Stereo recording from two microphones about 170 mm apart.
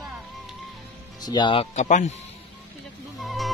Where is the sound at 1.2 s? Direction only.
25° left (ahead or behind); by 2.1 s 40° left (ahead or behind).